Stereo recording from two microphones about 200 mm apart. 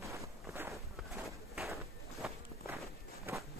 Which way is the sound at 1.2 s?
Centre (ahead or behind).